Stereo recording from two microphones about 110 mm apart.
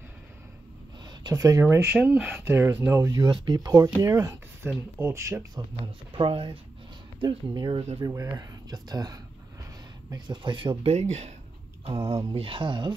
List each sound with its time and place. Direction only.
1.0 s speech: 40° right (ahead or behind)
1.9 s speech: 10° right (ahead or behind)
2.4 s speech: 25° right (ahead or behind)
3.1 s speech: 40° right (ahead or behind)
5.6 s speech: 35° right (ahead or behind)
6.1 s speech: 55° right (ahead or behind)
7.2 s speech: 40° right (ahead or behind)
10.9 s speech: 90° right
11.8 s speech: 60° right (ahead or behind)